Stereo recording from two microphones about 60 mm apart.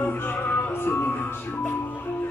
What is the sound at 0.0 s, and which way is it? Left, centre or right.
Music, left.